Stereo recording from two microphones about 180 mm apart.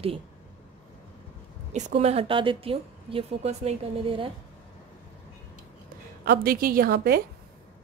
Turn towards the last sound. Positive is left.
turn(degrees=-55)  # may be behind; listen again after turning